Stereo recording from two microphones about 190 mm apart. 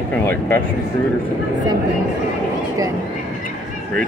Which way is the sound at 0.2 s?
10° left (ahead or behind).